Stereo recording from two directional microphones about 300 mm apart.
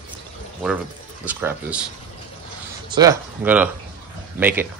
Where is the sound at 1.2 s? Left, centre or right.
Centre.